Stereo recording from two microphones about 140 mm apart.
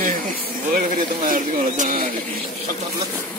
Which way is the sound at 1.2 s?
70° right (ahead or behind).